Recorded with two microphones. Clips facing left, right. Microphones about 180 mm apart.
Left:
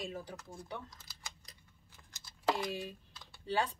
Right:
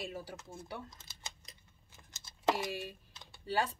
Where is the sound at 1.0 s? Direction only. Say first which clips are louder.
Right 1 dB; 25° right (ahead or behind).